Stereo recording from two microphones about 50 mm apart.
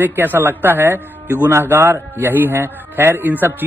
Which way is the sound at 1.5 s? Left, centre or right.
Right.